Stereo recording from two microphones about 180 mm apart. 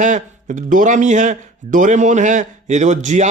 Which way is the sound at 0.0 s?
40° right (ahead or behind).